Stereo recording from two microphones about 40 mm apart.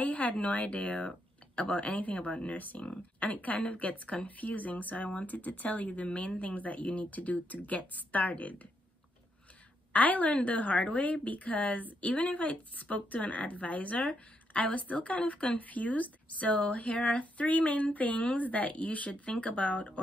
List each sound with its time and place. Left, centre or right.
0.0 s a woman's voice: left
9.9 s a woman's voice: left